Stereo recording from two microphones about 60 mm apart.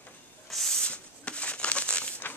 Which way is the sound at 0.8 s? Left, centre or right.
Centre.